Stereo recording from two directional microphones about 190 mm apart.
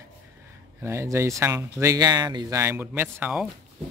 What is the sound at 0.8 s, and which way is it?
Speech, 15° right (ahead or behind).